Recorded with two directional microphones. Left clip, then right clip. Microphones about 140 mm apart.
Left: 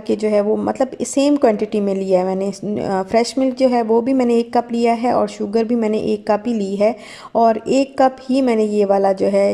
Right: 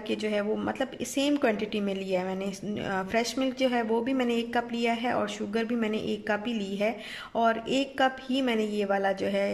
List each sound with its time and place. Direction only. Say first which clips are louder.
0.1 s a woman's voice: left 13 dB; 40° left (ahead or behind)